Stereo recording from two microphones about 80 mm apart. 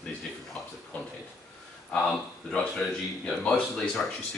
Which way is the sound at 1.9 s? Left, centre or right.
Centre.